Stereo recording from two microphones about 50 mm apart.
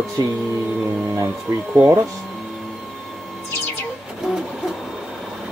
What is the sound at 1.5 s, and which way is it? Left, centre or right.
Speech, right.